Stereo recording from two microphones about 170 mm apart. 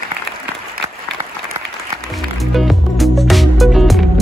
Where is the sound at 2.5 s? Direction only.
Centre (ahead or behind).